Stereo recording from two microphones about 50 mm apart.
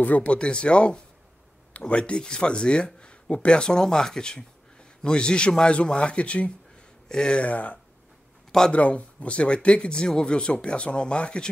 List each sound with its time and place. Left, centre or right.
0.0 s speech: left
7.4 s speech: left
8.5 s speech: centre
8.7 s speech: left